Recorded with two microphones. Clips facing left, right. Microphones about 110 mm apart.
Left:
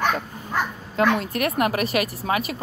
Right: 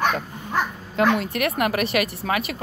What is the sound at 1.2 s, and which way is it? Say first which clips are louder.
Speech: even; 35° left (ahead or behind).